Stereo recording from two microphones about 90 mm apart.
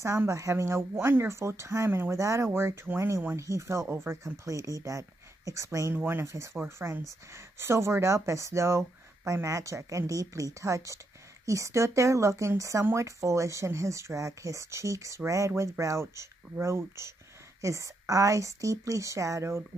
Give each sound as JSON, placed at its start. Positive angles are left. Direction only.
{"t": 0.0, "sound": "speech", "side_deg": -30}